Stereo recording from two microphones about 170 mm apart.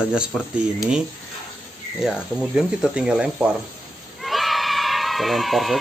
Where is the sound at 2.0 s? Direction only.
5° right (ahead or behind).